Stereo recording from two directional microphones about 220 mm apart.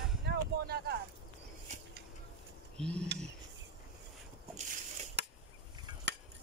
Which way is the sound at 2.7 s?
5° left (ahead or behind).